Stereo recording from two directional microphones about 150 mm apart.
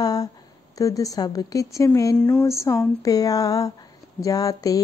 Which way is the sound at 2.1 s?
5° left (ahead or behind).